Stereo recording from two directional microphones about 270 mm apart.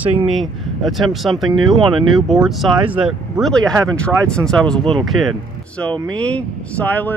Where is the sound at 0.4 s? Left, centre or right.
Centre.